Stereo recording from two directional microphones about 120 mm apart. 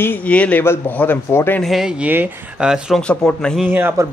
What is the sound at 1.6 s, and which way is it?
Speech, 5° right (ahead or behind).